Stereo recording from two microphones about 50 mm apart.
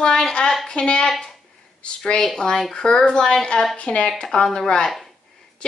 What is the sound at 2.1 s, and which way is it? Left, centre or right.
Speech, centre.